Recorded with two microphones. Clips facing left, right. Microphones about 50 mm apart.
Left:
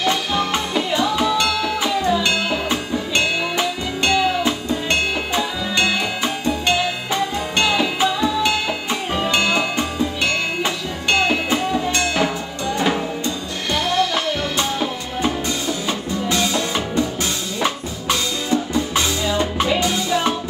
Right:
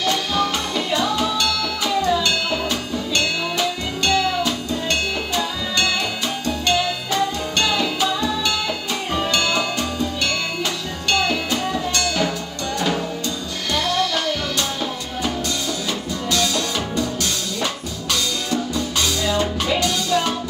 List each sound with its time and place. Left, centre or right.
0.0 s music: centre